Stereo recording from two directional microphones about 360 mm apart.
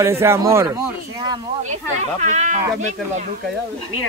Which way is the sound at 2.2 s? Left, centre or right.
Centre.